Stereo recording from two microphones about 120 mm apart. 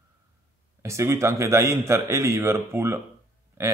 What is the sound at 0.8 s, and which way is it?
Speech, 25° right (ahead or behind).